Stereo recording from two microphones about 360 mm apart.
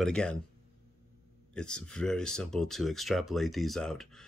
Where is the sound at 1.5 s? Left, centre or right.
Centre.